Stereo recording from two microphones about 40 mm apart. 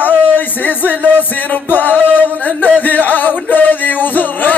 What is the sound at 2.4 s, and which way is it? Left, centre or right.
Speech, left.